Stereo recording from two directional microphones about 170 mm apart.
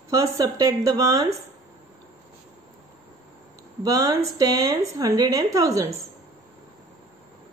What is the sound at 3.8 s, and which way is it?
A woman's voice, 20° right (ahead or behind).